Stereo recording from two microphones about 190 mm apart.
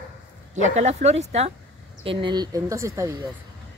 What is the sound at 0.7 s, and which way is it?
Speech, 35° right (ahead or behind).